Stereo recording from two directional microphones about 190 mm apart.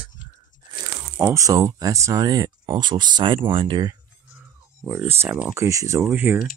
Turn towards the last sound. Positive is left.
turn(degrees=-10)  # may be behind; listen again after turning